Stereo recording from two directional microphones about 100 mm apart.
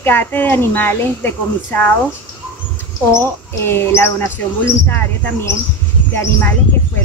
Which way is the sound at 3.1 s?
25° left (ahead or behind).